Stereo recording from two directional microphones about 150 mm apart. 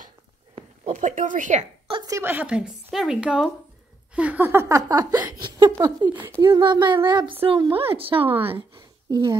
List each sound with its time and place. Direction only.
0.6 s speech: 50° right (ahead or behind)
1.9 s a sound: 30° right (ahead or behind)
2.1 s speech: 15° right (ahead or behind)
6.0 s speech: 10° right (ahead or behind)
6.4 s speech: 30° right (ahead or behind)
8.7 s a sound: 30° right (ahead or behind)